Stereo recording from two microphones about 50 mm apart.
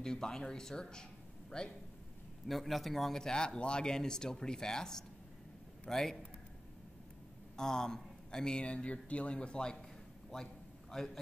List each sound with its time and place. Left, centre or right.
0.0 s a man's voice: centre
2.4 s a man's voice: centre
7.5 s a man's voice: centre
10.3 s a sound: centre